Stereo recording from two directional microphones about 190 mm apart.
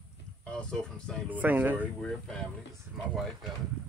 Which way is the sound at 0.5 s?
5° left (ahead or behind).